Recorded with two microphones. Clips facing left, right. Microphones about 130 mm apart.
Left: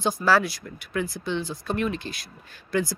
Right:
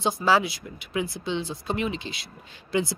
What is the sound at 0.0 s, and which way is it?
A woman's voice, 20° right (ahead or behind).